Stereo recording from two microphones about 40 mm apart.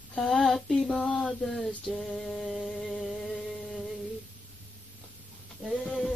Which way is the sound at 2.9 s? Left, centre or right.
Centre.